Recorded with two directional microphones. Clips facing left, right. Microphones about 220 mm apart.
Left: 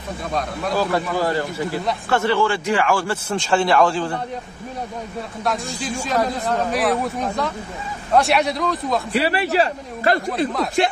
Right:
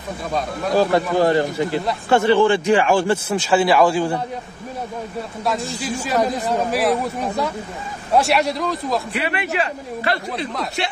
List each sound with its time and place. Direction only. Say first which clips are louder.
0.7 s speech: right 5 dB; 20° right (ahead or behind)
3.3 s speech: right 2 dB; 5° right (ahead or behind)
5.4 s speech: right 1 dB; centre (ahead or behind)
9.1 s a man's voice: left 4 dB; 35° left (ahead or behind)